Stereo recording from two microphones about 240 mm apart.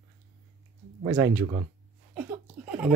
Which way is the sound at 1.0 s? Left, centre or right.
Centre.